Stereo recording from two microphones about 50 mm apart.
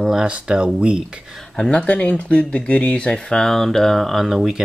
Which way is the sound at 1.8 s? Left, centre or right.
Left.